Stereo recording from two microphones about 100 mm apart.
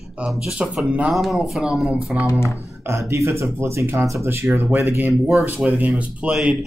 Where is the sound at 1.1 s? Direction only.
Centre (ahead or behind).